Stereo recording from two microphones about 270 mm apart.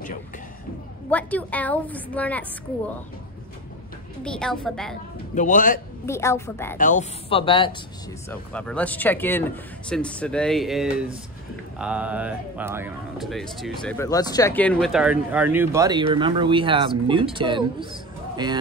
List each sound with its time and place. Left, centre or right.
1.1 s speech: centre
4.2 s speech: centre
5.3 s speech: left
6.0 s a woman's voice: centre
6.8 s speech: left
8.3 s speech: centre